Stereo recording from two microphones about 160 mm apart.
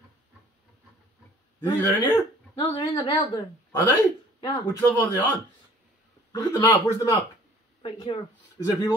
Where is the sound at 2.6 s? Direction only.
25° left (ahead or behind).